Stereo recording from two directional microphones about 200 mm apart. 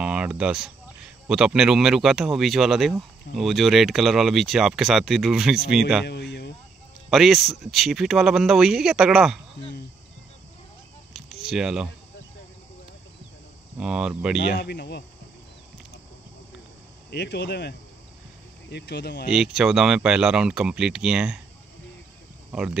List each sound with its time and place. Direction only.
0.0 s speech: 5° right (ahead or behind)
6.0 s a sound: 60° left (ahead or behind)
7.1 s speech: centre (ahead or behind)
11.4 s speech: 5° right (ahead or behind)
13.7 s speech: 5° right (ahead or behind)
14.6 s speech: 55° left (ahead or behind)
17.1 s speech: 55° left (ahead or behind)
19.3 s speech: 5° right (ahead or behind)
22.5 s speech: 5° right (ahead or behind)